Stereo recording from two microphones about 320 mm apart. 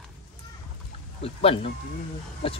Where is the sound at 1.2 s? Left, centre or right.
Centre.